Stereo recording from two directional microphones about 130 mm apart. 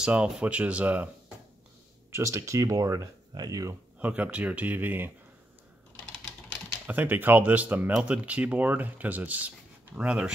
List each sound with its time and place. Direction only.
0.0 s speech: 10° right (ahead or behind); by 3.7 s 25° right (ahead or behind)
4.0 s speech: 10° right (ahead or behind)
6.9 s speech: 15° right (ahead or behind)